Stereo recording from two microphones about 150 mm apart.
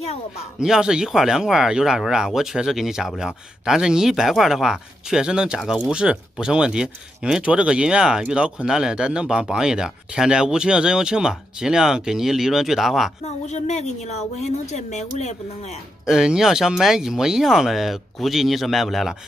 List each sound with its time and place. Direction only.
0.6 s speech: 5° right (ahead or behind)
13.2 s a woman's voice: 50° left (ahead or behind)
16.1 s speech: 5° right (ahead or behind)